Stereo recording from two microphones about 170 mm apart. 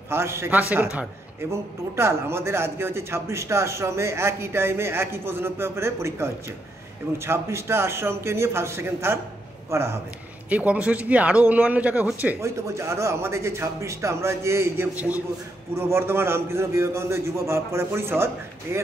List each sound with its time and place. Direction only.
0.1 s a man's voice: 15° right (ahead or behind)